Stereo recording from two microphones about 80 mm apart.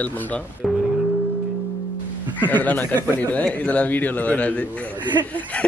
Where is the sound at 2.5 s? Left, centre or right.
Left.